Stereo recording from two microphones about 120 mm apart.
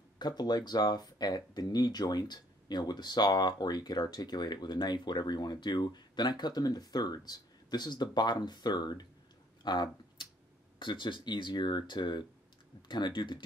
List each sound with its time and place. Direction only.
0.2 s speech: 35° left (ahead or behind)
9.6 s a sound: 40° left (ahead or behind)
10.8 s speech: 45° left (ahead or behind)